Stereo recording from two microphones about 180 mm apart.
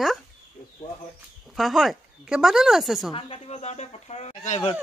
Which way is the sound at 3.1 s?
30° left (ahead or behind).